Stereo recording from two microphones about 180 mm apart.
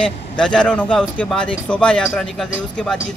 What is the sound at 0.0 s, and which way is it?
A man's voice, 5° left (ahead or behind).